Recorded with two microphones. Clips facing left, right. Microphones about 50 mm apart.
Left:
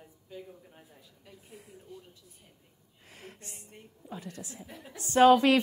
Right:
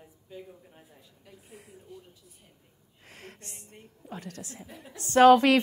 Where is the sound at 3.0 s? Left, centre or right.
Right.